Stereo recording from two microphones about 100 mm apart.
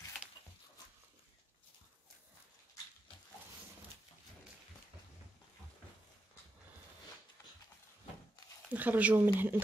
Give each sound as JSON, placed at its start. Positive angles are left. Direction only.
{"t": 8.6, "sound": "speech", "side_deg": -15}